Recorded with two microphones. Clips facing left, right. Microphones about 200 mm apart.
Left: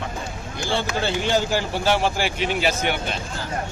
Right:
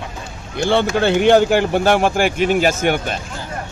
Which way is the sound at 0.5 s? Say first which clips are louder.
Right 9 dB; 60° right (ahead or behind).